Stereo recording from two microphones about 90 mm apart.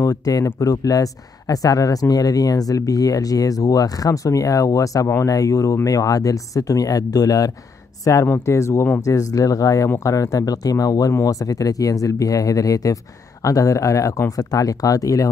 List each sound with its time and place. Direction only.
0.0 s speech: 40° left (ahead or behind)